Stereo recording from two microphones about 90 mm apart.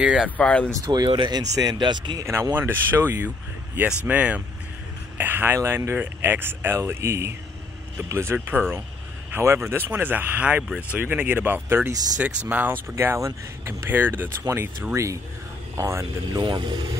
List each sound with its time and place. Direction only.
0.0 s speech: 10° right (ahead or behind)
0.4 s speech: 15° left (ahead or behind)
0.9 s speech: 60° right (ahead or behind)
1.5 s speech: 45° right (ahead or behind)
2.1 s speech: 35° right (ahead or behind); by 12.7 s 20° right (ahead or behind)
12.9 s speech: 30° right (ahead or behind)
16.3 s speech: 55° right (ahead or behind)